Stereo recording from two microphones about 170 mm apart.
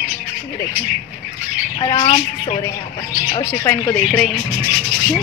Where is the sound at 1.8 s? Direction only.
30° left (ahead or behind).